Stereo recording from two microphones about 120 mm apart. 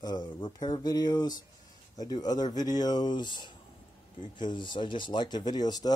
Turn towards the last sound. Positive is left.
turn(degrees=35)  # may be behind; listen again after turning